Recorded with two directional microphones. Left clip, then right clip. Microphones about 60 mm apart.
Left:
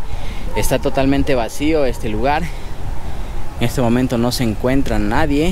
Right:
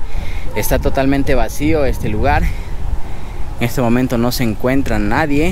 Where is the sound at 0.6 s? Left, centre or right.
Right.